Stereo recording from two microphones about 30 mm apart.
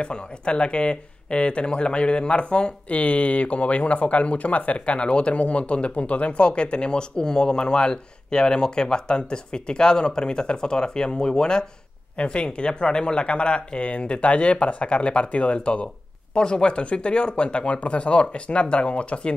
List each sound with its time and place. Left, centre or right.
0.0 s speech: left
3.0 s speech: left
12.2 s speech: left
13.8 s speech: left
16.3 s speech: left